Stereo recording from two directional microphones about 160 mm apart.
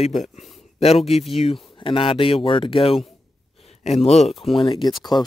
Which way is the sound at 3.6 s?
40° left (ahead or behind).